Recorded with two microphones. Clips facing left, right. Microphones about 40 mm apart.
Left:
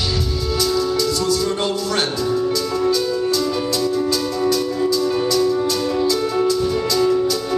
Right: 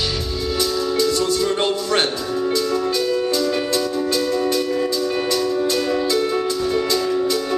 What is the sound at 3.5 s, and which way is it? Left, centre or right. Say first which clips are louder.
Music: left 1 dB; right.